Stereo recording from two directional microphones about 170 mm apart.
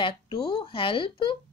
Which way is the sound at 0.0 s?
30° left (ahead or behind).